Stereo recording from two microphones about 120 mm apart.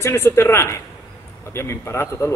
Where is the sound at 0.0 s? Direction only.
20° left (ahead or behind).